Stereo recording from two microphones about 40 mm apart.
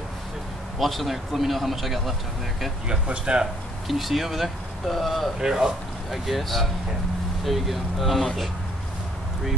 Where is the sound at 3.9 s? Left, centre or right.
Centre.